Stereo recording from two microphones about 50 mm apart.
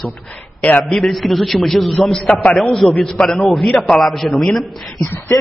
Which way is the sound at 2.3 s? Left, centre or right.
Centre.